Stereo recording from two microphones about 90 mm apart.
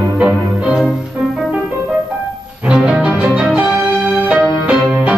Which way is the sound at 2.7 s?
15° right (ahead or behind).